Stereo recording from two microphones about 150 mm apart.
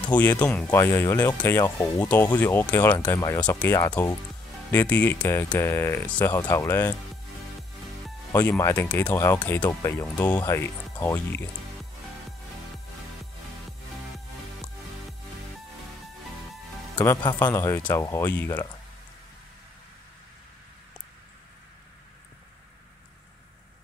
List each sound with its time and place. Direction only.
0.1 s speech: 10° left (ahead or behind)
8.3 s speech: 15° left (ahead or behind)
17.0 s speech: 10° left (ahead or behind)